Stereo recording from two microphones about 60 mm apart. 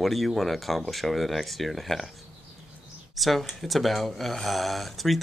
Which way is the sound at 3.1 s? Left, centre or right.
Centre.